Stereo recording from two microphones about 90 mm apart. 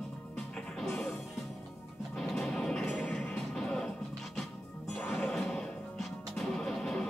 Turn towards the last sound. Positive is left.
turn(degrees=5)  # may be behind; listen again after turning